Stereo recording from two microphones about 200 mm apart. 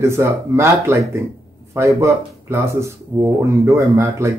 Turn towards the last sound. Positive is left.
turn(degrees=-15)  # may be behind; listen again after turning